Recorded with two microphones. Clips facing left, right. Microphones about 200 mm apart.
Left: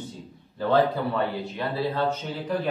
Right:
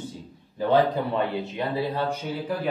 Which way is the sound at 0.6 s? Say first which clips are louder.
Right 1 dB; 20° right (ahead or behind).